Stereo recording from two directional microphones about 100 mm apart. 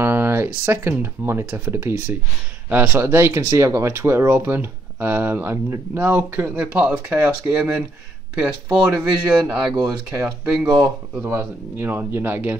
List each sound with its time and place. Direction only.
0.0 s speech: 25° right (ahead or behind)